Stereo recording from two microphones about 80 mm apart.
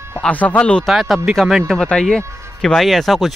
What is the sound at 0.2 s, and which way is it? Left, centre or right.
Speech, centre.